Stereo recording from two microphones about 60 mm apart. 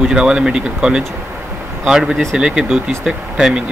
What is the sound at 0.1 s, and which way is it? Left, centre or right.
Speech, centre.